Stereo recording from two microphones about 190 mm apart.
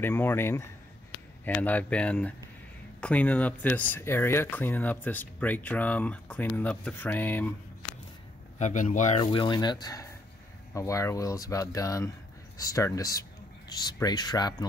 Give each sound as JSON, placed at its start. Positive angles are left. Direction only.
{"t": 0.0, "sound": "speech", "side_deg": 10}
{"t": 8.5, "sound": "speech", "side_deg": 40}